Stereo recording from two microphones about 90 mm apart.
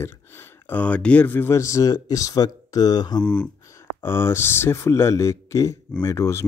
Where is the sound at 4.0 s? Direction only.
30° left (ahead or behind).